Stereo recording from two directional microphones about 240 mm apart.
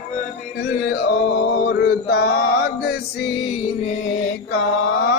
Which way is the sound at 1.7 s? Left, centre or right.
Left.